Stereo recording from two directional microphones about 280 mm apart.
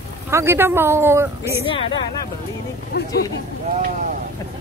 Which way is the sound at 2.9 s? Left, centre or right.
Left.